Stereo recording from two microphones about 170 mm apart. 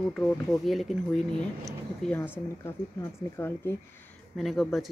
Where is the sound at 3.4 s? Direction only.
15° left (ahead or behind).